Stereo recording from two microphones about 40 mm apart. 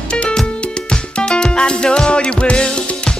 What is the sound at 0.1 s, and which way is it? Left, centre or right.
Music, left.